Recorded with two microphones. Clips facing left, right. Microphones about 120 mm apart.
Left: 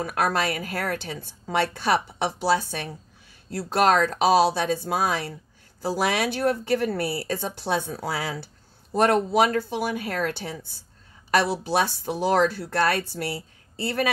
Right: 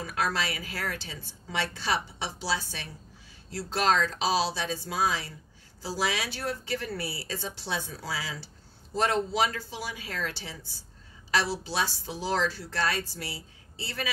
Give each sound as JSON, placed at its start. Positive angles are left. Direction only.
{"t": 0.0, "sound": "speech", "side_deg": 55}